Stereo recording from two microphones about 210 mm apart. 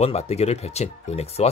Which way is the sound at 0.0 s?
30° left (ahead or behind).